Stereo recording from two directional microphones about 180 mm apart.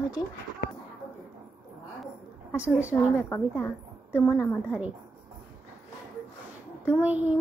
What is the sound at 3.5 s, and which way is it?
Speech, 5° right (ahead or behind).